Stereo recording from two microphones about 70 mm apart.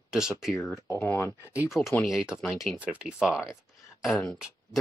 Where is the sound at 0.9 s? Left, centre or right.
Left.